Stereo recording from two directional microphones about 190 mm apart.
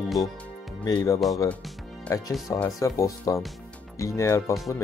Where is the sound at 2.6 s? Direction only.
15° left (ahead or behind).